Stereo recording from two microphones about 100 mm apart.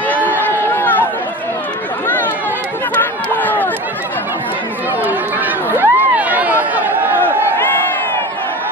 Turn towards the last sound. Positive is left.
turn(degrees=-20)  # may be behind; listen again after turning